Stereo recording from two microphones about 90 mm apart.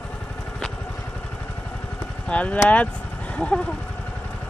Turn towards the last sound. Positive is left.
turn(degrees=15)  # may be behind; listen again after turning